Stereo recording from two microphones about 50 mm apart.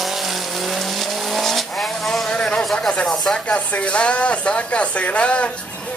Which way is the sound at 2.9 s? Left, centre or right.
Centre.